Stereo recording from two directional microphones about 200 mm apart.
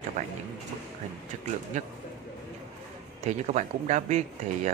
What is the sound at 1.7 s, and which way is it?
Speech, 40° right (ahead or behind).